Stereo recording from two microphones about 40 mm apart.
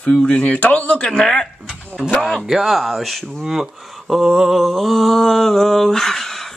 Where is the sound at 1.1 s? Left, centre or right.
Centre.